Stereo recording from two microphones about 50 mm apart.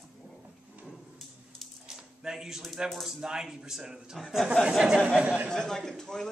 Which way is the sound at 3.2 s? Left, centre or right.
Centre.